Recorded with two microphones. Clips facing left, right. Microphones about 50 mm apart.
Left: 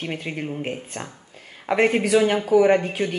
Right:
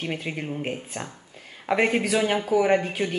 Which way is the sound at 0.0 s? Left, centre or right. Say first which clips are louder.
Left 1 dB; centre.